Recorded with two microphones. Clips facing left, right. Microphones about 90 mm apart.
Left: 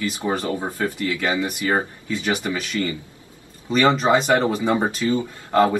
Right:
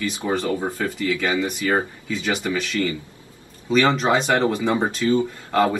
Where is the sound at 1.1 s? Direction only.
5° left (ahead or behind).